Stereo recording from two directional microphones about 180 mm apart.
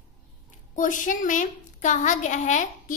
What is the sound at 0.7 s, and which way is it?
A woman's voice, 45° left (ahead or behind).